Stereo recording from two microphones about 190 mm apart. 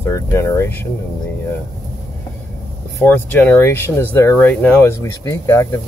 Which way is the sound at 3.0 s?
10° left (ahead or behind).